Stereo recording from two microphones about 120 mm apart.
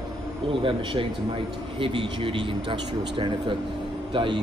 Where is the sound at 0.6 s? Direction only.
45° right (ahead or behind).